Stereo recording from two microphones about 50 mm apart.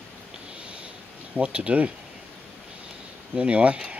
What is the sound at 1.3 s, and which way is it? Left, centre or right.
Speech, right.